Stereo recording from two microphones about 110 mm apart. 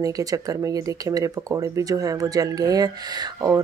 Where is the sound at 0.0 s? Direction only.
35° right (ahead or behind).